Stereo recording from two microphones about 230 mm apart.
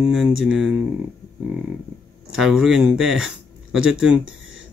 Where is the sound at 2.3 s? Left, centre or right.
Centre.